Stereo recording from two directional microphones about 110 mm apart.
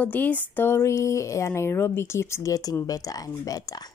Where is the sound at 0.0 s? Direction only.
15° left (ahead or behind).